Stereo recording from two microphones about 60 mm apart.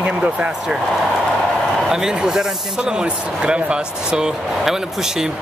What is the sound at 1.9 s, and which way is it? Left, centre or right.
Speech, centre.